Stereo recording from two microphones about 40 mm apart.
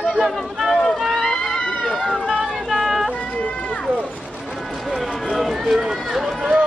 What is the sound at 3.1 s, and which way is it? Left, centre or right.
Run, left.